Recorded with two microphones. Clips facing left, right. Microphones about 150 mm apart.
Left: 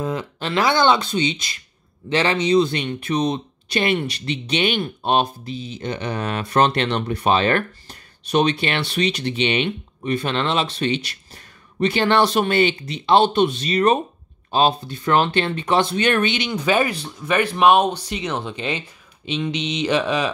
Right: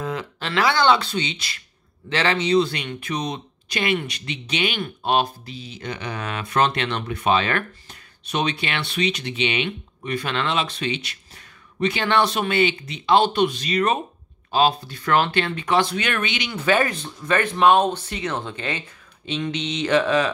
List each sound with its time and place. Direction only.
0.0 s speech: 20° left (ahead or behind)
16.5 s speech: 15° left (ahead or behind)